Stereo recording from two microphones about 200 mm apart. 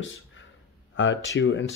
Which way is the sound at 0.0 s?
75° left (ahead or behind).